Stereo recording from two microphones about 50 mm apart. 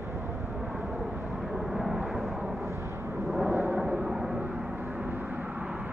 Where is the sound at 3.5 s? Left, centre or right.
Right.